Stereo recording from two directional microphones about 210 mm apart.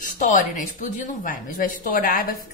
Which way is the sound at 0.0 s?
40° left (ahead or behind).